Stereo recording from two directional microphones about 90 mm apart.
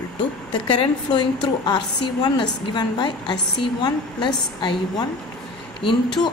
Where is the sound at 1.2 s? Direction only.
55° left (ahead or behind).